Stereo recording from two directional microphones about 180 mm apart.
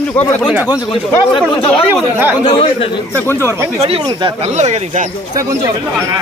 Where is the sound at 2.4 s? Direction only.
30° left (ahead or behind).